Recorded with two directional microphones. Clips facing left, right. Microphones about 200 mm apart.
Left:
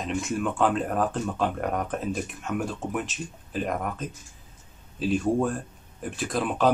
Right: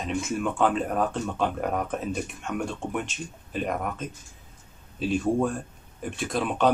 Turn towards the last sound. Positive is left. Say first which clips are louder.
# even
turn(degrees=0)  # may be behind; listen again after turning